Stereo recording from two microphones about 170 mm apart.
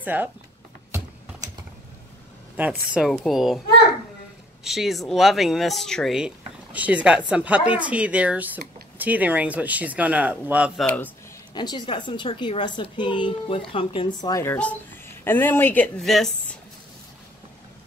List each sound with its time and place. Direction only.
0.0 s speech: 10° right (ahead or behind)
2.5 s speech: 10° right (ahead or behind)
4.6 s speech: centre (ahead or behind)
11.5 s a woman's voice: 25° left (ahead or behind); by 16.5 s centre (ahead or behind)